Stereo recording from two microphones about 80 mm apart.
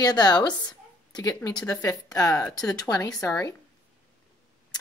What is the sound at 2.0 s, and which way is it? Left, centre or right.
A woman's voice, left.